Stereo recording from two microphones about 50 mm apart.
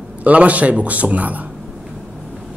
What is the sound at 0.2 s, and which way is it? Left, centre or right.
Speech, right.